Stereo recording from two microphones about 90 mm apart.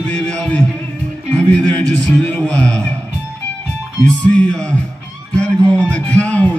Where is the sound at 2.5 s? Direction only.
15° left (ahead or behind).